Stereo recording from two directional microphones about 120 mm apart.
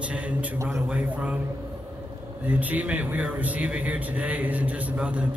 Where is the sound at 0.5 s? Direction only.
25° right (ahead or behind).